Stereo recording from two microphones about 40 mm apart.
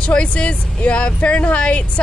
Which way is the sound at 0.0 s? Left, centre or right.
Left.